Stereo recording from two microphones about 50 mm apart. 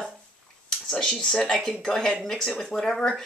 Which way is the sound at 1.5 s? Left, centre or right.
Centre.